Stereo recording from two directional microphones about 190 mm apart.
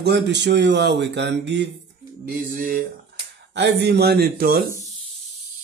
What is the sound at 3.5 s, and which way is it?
Speech, 65° right (ahead or behind).